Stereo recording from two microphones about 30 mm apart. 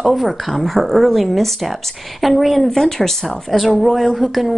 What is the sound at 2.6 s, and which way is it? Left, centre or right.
Speech, centre.